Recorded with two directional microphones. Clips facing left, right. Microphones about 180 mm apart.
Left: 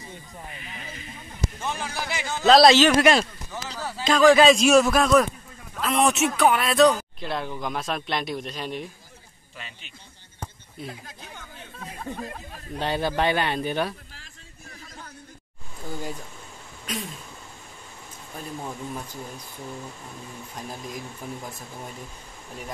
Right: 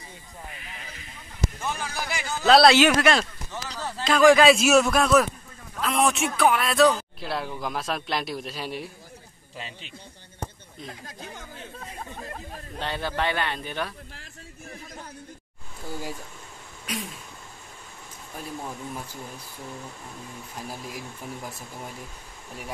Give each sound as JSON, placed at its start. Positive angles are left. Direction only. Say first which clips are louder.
{"t": 1.6, "sound": "speech", "louder": "left 1 dB", "side_deg": 20}
{"t": 2.7, "sound": "speech", "louder": "left 1 dB", "side_deg": -10}
{"t": 3.0, "sound": "a sound", "louder": "left 3 dB", "side_deg": 10}
{"t": 4.1, "sound": "speech", "louder": "left 1 dB", "side_deg": -10}
{"t": 12.7, "sound": "speech", "louder": "left 4 dB", "side_deg": 15}
{"t": 20.5, "sound": "speech", "louder": "left 1 dB", "side_deg": -5}